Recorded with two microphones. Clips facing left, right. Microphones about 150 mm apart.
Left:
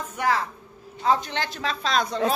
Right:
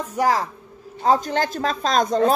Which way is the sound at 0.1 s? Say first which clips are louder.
Right 4 dB; 40° right (ahead or behind).